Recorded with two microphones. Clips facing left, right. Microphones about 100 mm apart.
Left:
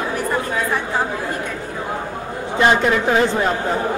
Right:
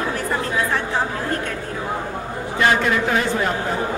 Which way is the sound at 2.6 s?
20° left (ahead or behind).